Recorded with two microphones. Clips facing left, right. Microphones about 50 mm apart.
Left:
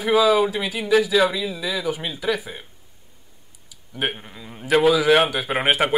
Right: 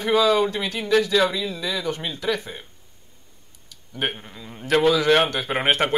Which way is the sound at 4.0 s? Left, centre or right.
Centre.